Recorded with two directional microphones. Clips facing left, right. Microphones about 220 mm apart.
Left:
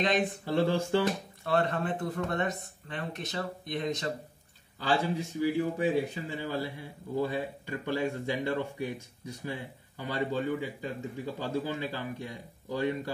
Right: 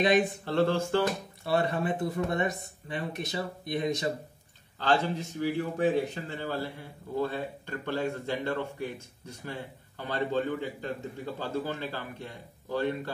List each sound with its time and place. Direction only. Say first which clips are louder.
0.5 s speech: left 2 dB; 10° left (ahead or behind)
1.4 s speech: right 1 dB; 10° right (ahead or behind)
4.7 s speech: right 1 dB; 10° left (ahead or behind)